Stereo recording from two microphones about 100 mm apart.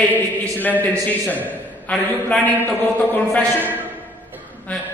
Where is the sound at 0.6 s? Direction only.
20° left (ahead or behind).